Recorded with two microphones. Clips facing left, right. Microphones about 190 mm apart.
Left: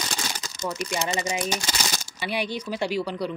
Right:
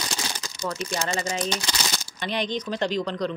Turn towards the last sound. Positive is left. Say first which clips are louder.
# right 1 dB
turn(degrees=10)  # may be behind; listen again after turning